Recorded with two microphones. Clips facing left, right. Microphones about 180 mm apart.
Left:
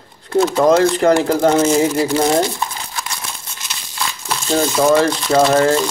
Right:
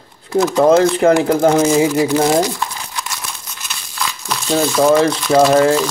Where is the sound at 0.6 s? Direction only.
5° right (ahead or behind).